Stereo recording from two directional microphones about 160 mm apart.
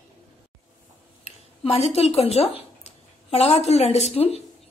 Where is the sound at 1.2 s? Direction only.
40° left (ahead or behind).